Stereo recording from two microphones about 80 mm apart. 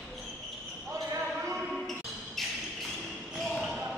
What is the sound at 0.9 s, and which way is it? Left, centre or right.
Basketball bounce, right.